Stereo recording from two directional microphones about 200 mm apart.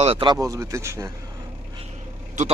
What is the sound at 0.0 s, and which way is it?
Speech, 25° right (ahead or behind).